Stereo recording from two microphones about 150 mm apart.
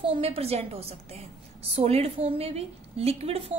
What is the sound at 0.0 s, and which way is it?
A woman's voice, 40° right (ahead or behind).